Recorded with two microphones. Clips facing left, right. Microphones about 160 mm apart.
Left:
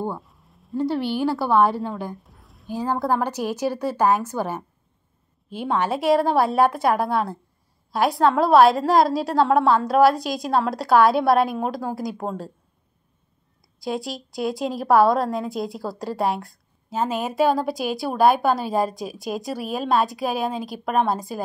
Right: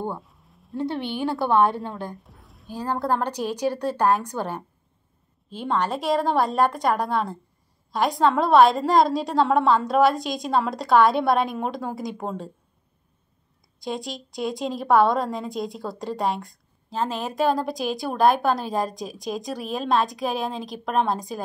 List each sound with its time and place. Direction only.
0.0 s speech: centre (ahead or behind)
2.7 s a woman's voice: 15° left (ahead or behind)
13.7 s a woman's voice: 5° left (ahead or behind)